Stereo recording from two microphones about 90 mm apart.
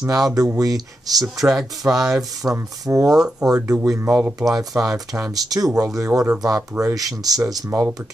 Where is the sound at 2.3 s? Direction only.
40° right (ahead or behind).